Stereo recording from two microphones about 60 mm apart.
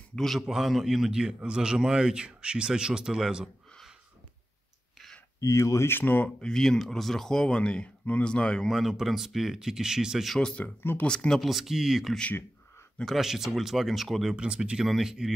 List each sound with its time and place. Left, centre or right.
0.2 s a man's voice: centre
5.4 s speech: left
5.9 s speech: left
6.2 s speech: centre
8.7 s speech: centre
10.3 s speech: centre
10.8 s speech: left
11.1 s speech: centre
11.4 s speech: centre
14.3 s a man's voice: centre